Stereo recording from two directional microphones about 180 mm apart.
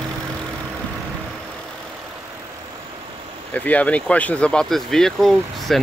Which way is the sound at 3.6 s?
10° left (ahead or behind).